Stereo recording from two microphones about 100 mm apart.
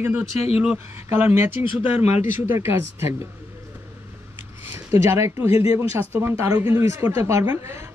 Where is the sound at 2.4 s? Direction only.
25° right (ahead or behind).